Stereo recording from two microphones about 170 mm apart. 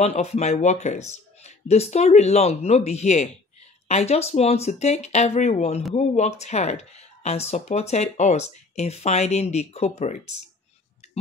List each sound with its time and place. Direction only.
0.0 s speech: 40° left (ahead or behind)